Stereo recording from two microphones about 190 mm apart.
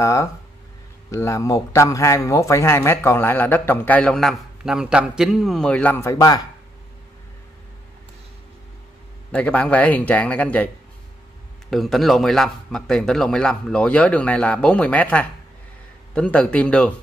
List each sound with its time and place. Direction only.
0.0 s speech: 15° left (ahead or behind)
9.3 s speech: 5° left (ahead or behind)
11.7 s a man's voice: centre (ahead or behind)